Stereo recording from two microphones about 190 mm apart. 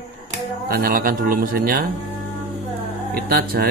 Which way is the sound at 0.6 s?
50° right (ahead or behind).